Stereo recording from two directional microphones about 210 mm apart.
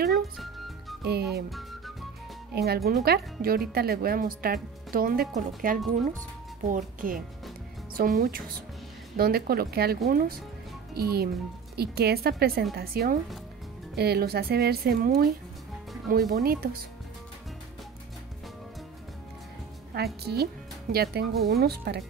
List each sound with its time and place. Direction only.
1.0 s speech: 50° right (ahead or behind)
2.5 s speech: 50° right (ahead or behind)
19.9 s a woman's voice: 50° right (ahead or behind)